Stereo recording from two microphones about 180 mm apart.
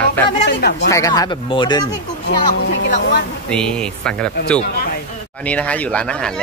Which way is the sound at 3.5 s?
5° left (ahead or behind).